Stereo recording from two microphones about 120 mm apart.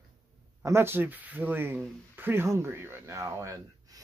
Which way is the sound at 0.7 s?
20° right (ahead or behind).